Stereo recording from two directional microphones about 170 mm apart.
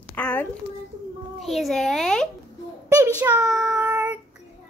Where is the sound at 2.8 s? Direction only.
15° right (ahead or behind).